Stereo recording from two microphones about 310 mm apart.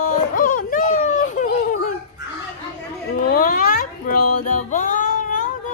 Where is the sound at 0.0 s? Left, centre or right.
Left.